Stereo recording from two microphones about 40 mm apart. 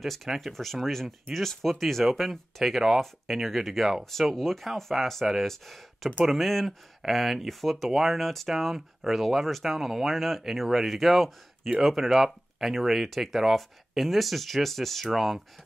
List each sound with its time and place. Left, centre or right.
0.0 s speech: centre